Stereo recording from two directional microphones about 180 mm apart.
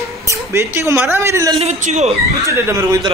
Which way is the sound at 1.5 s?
35° right (ahead or behind).